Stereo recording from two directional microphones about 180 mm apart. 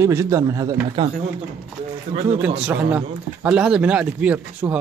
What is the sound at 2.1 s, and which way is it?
Speech, 40° right (ahead or behind).